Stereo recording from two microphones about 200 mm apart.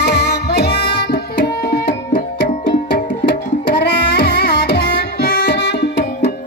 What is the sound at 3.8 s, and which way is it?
Music, 55° left (ahead or behind).